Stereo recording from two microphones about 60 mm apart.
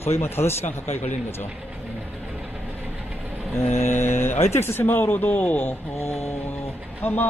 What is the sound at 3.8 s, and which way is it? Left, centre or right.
Speech, left.